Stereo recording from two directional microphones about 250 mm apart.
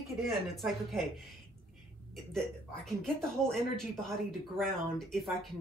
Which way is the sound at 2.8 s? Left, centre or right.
Centre.